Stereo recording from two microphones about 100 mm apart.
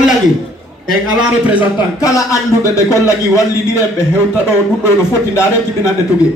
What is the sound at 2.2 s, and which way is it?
A man's voice, 30° left (ahead or behind).